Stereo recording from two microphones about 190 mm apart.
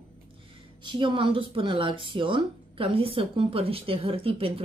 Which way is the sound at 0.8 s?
25° right (ahead or behind).